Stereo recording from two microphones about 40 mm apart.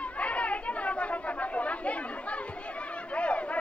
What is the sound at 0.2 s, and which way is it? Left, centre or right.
Chatter, left.